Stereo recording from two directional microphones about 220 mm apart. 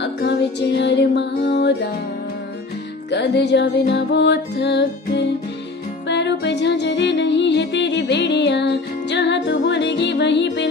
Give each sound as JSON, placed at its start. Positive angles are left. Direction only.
{"t": 0.0, "sound": "music", "side_deg": 50}
{"t": 3.1, "sound": "music", "side_deg": 50}